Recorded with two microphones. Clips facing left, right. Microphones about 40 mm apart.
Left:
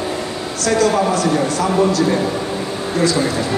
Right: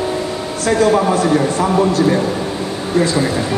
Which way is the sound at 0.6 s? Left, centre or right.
Right.